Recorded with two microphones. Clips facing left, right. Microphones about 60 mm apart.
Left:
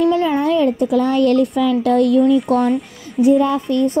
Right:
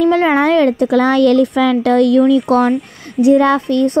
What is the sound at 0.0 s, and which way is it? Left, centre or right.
A child's voice, right.